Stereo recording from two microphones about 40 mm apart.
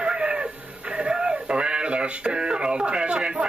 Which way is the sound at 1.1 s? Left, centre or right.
Right.